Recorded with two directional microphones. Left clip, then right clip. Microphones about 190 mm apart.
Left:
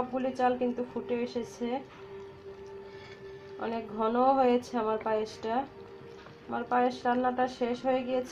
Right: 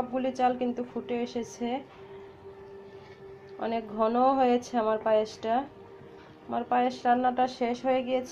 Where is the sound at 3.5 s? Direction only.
5° right (ahead or behind).